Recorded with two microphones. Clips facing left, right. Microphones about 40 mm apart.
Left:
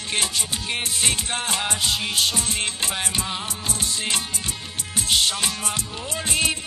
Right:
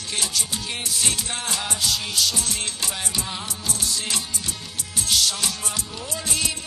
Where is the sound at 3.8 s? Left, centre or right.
Left.